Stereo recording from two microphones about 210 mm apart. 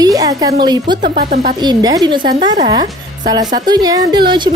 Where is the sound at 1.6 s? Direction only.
20° right (ahead or behind).